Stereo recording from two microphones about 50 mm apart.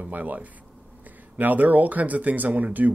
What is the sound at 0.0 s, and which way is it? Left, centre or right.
Speech, right.